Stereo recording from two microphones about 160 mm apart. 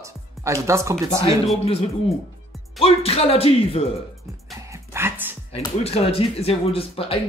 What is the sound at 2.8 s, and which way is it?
Speech, 35° left (ahead or behind).